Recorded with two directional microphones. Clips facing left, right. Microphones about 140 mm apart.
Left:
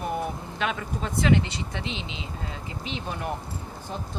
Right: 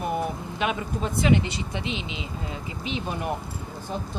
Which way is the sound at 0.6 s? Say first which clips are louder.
Right 2 dB; 15° right (ahead or behind).